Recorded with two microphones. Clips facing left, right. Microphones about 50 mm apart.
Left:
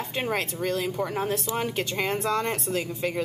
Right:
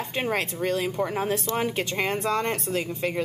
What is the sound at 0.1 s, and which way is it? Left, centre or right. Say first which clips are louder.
A woman's voice: right 1 dB; centre.